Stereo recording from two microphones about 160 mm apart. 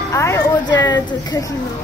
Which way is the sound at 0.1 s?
15° left (ahead or behind).